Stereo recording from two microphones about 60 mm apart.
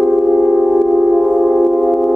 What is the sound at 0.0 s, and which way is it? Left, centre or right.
Music, centre.